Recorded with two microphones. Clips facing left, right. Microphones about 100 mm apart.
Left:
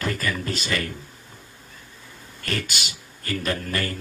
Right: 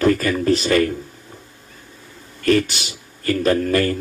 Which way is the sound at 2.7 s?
35° right (ahead or behind).